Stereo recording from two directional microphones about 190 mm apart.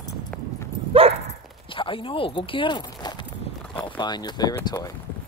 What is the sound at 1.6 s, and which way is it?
Speech, 25° left (ahead or behind).